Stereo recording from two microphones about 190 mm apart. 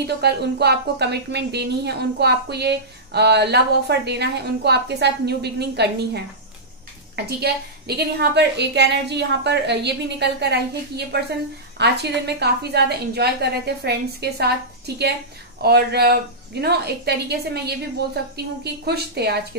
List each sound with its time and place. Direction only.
0.0 s speech: 60° right (ahead or behind)
7.2 s speech: 55° right (ahead or behind)
15.6 s speech: 55° right (ahead or behind)